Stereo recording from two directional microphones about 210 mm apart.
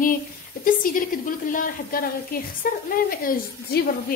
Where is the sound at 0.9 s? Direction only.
40° left (ahead or behind).